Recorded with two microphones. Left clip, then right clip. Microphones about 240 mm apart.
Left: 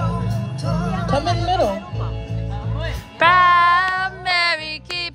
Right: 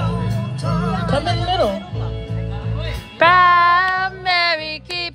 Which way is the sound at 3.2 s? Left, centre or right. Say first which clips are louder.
Right 1 dB; centre.